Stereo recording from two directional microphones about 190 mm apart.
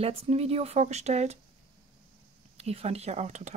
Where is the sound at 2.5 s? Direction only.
35° right (ahead or behind).